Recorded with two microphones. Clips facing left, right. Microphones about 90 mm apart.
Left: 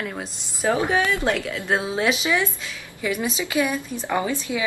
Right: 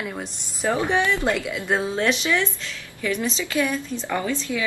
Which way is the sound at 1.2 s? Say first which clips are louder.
Even; 5° right (ahead or behind).